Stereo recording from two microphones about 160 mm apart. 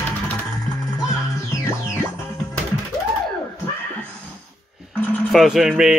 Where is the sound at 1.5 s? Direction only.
20° left (ahead or behind).